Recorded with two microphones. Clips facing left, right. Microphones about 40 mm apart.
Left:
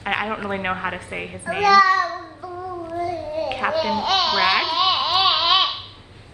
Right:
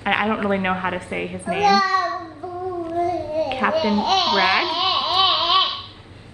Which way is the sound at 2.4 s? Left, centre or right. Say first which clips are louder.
Right 2 dB; right.